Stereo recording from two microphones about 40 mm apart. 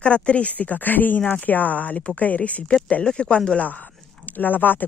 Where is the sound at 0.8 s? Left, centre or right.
Left.